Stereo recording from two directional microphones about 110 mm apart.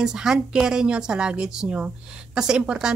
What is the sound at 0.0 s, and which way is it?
A woman's voice, 5° right (ahead or behind).